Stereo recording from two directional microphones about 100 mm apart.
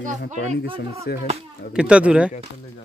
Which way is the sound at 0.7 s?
90° right.